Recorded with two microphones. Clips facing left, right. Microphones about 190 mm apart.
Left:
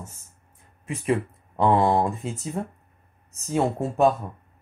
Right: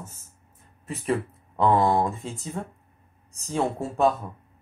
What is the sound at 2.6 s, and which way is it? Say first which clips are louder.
Speech: left 3 dB; 30° left (ahead or behind).